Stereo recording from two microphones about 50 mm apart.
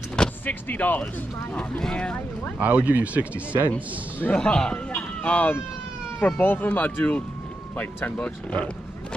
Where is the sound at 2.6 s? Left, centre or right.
Right.